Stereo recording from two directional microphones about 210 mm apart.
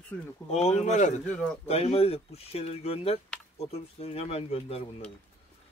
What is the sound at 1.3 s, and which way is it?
Speech, 5° left (ahead or behind).